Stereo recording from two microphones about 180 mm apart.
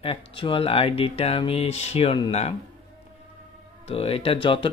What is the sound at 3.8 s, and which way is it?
Speech, 30° left (ahead or behind).